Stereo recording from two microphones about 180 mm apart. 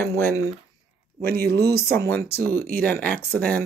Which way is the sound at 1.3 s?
60° right (ahead or behind).